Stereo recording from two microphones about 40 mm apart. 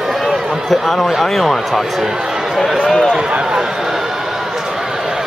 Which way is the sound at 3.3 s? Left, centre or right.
Centre.